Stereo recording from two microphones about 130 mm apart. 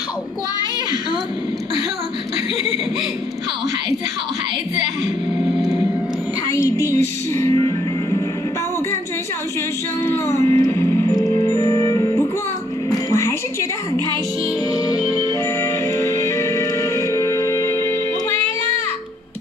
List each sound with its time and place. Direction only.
5.4 s a sound: centre (ahead or behind)
6.5 s music: 20° left (ahead or behind)
10.2 s music: 20° left (ahead or behind)
14.7 s music: 30° left (ahead or behind)